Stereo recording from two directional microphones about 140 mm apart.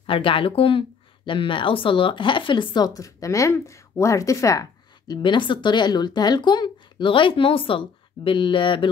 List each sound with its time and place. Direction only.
0.0 s speech: 40° left (ahead or behind)